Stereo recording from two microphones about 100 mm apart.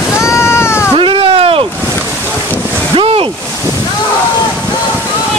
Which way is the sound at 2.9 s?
65° right (ahead or behind).